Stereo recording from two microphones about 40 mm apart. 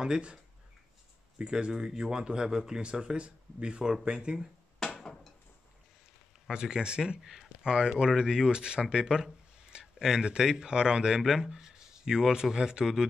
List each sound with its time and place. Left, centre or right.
1.4 s speech: right
6.5 s speech: centre